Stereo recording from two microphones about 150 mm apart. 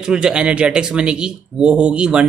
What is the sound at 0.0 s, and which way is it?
A man's voice, 5° right (ahead or behind).